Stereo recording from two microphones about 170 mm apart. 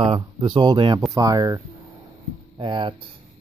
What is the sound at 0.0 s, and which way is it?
Speech, 30° right (ahead or behind).